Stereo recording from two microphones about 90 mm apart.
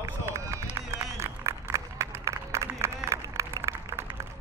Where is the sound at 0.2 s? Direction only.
30° right (ahead or behind).